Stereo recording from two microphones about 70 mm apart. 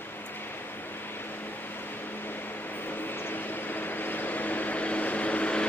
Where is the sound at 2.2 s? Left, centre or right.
Left.